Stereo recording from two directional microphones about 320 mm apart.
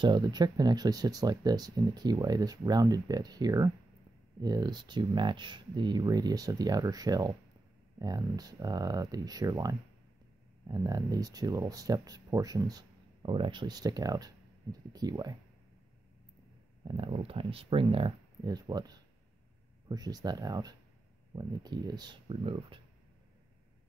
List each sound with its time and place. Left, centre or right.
0.0 s speech: centre
16.8 s speech: centre